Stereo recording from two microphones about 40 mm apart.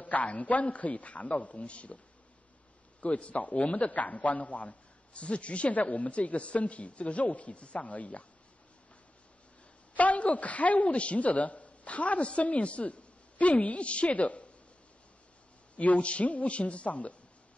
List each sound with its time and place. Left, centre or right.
0.0 s speech: left
3.0 s speech: left
9.9 s a man's voice: left
15.7 s speech: left